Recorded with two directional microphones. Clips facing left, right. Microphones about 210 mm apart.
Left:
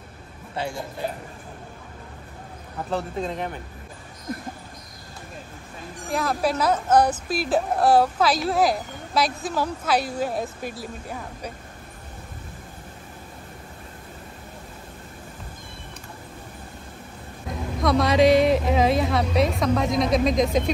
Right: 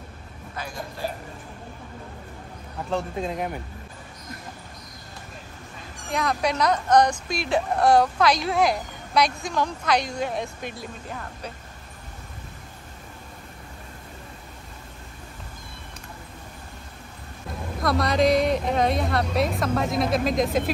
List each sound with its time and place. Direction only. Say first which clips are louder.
0.6 s a man's voice: left 5 dB; 25° left (ahead or behind)
2.9 s a woman's voice: even; centre (ahead or behind)
6.1 s a woman's voice: left 1 dB; 5° left (ahead or behind)
17.8 s a woman's voice: left 3 dB; centre (ahead or behind)